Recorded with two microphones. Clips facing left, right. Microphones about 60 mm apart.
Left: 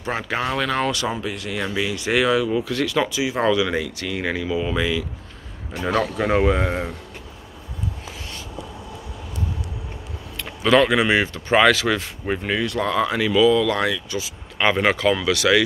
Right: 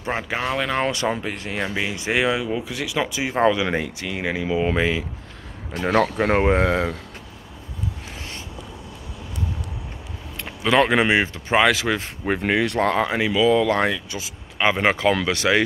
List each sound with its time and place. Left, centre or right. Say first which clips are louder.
0.0 s speech: left 1 dB; centre
0.7 s speech: right 1 dB; right
1.1 s speech: even; right; by 3.1 s centre
3.1 s speech: right 1 dB; right
4.0 s speech: left 1 dB; centre
4.5 s speech: right 4 dB; right
5.9 s speech: right 2 dB; right
6.7 s speech: right 4 dB; right
10.8 s speech: even; right
12.3 s speech: right 3 dB; right
12.9 s speech: left 1 dB; right
13.5 s speech: even; right